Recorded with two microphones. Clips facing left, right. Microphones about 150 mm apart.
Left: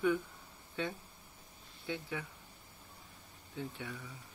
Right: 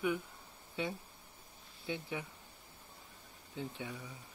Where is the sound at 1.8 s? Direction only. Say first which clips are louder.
Even; 20° right (ahead or behind).